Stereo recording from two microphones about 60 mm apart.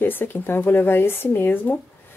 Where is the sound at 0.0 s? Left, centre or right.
Left.